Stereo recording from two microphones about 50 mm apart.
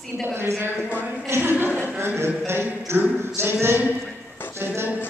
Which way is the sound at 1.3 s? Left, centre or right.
Right.